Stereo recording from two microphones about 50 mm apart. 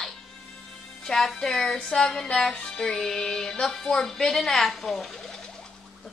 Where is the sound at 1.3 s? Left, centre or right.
Centre.